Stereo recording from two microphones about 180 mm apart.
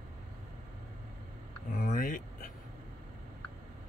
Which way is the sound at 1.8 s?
50° left (ahead or behind).